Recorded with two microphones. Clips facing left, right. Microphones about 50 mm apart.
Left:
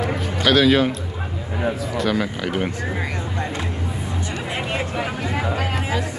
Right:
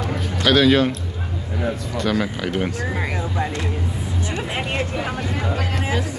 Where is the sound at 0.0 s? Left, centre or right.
Centre.